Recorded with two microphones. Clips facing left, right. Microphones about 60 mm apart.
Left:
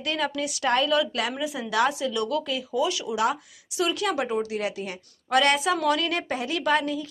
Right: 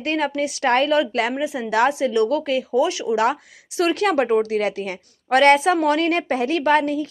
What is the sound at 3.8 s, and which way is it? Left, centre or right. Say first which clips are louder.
A woman's voice: right 7 dB; right.